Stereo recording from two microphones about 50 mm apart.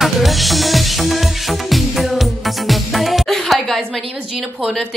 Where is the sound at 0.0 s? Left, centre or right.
Centre.